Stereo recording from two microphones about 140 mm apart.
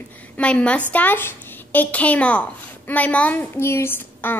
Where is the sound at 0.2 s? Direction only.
10° left (ahead or behind).